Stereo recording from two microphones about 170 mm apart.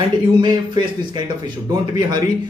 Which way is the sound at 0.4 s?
25° right (ahead or behind).